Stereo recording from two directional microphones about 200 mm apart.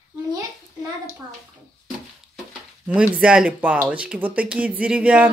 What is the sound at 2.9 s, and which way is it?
Speech, 5° right (ahead or behind).